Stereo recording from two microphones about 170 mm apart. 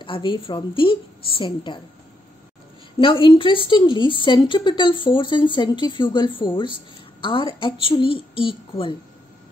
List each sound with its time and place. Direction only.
0.0 s a woman's voice: 30° left (ahead or behind)
3.0 s a woman's voice: 30° left (ahead or behind)